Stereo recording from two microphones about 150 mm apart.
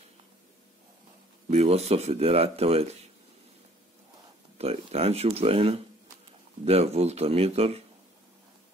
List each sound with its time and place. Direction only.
1.5 s speech: 45° right (ahead or behind)
4.6 s speech: 45° right (ahead or behind)